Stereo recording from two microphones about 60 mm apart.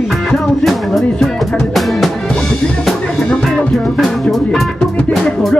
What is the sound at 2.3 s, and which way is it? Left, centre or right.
Drum, centre.